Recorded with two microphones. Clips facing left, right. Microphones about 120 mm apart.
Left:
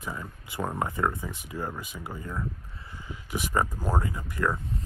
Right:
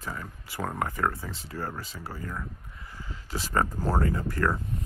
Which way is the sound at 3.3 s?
15° left (ahead or behind).